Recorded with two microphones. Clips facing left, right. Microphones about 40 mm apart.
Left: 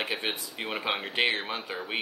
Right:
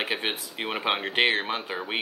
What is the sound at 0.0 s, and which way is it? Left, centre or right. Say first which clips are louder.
Speech: right 3 dB; right.